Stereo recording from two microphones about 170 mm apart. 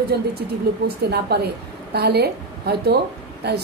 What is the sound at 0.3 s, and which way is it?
A woman's voice, 70° right (ahead or behind).